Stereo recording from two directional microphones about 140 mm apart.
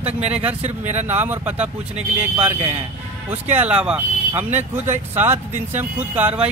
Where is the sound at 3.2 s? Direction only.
10° right (ahead or behind).